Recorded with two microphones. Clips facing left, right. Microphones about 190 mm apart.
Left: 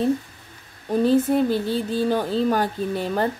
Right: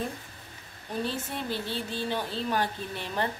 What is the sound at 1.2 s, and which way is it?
Speech, 40° left (ahead or behind).